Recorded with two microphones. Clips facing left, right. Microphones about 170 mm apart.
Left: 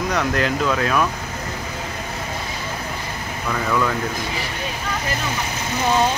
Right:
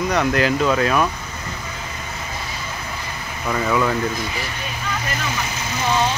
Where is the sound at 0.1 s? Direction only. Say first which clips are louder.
Right 3 dB; centre (ahead or behind).